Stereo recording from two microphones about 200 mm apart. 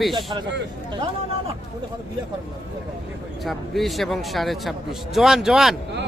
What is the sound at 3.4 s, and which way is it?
A man's voice, centre (ahead or behind).